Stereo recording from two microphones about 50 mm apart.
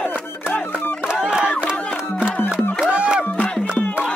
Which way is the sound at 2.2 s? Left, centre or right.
Centre.